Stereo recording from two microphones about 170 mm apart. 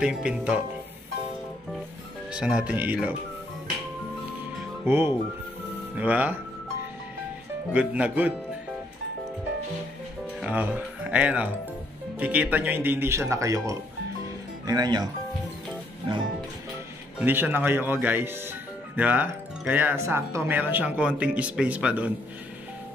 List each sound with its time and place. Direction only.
0.0 s speech: 5° right (ahead or behind)
2.3 s speech: 5° right (ahead or behind)
4.8 s speech: 15° right (ahead or behind)
7.7 s speech: 10° right (ahead or behind)
10.4 s speech: 10° right (ahead or behind); by 15.0 s 25° right (ahead or behind)
17.2 s speech: 10° right (ahead or behind)